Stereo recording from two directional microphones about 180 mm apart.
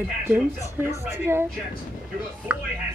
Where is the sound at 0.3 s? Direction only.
10° right (ahead or behind).